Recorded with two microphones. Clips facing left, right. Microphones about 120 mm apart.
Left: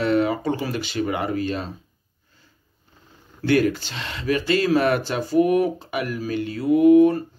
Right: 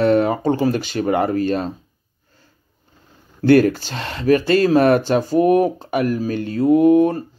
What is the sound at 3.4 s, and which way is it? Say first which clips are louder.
Speech: right 6 dB; 40° right (ahead or behind).